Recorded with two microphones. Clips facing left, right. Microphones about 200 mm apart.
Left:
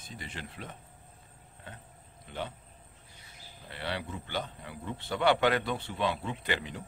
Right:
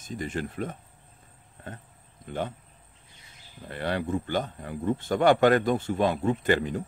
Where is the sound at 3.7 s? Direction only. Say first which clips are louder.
Right 9 dB; 50° right (ahead or behind).